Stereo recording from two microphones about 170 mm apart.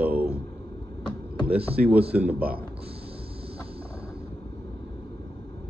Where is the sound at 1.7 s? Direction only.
65° right (ahead or behind).